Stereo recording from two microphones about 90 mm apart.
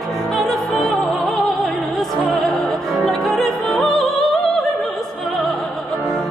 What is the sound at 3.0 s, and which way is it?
Music, 5° left (ahead or behind).